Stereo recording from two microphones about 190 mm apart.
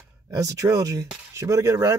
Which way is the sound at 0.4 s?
15° right (ahead or behind).